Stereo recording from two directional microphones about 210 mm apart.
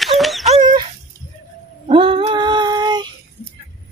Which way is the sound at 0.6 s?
20° right (ahead or behind).